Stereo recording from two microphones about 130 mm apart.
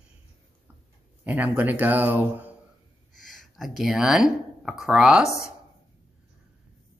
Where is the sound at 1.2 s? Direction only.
15° right (ahead or behind).